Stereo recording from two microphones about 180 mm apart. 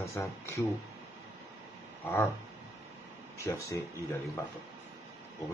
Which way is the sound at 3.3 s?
15° left (ahead or behind).